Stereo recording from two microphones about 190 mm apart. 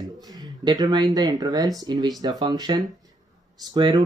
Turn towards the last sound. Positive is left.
turn(degrees=-25)  # may be behind; listen again after turning